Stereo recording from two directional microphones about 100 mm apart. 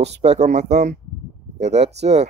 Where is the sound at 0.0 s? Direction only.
90° right.